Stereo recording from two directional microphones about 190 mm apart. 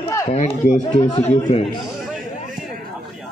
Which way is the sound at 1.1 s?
35° left (ahead or behind).